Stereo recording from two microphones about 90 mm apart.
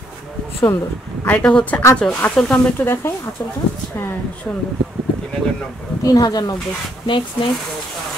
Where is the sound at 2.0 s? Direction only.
25° left (ahead or behind).